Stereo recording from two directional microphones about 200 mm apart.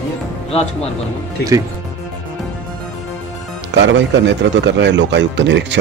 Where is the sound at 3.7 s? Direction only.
60° right (ahead or behind).